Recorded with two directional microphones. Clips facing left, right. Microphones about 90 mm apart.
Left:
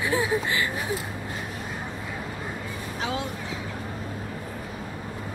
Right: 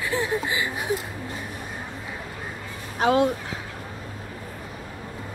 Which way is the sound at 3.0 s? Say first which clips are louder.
Right 11 dB; 50° right (ahead or behind).